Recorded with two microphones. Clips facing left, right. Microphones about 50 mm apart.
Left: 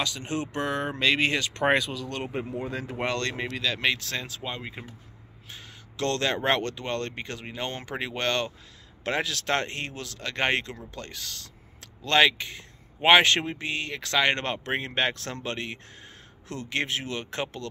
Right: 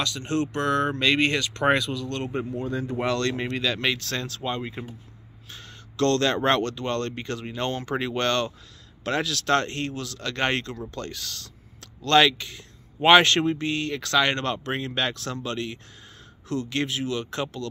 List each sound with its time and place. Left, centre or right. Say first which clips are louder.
0.0 s speech: right 4 dB; centre
3.3 s speech: right 3 dB; centre
5.5 s speech: right 1 dB; centre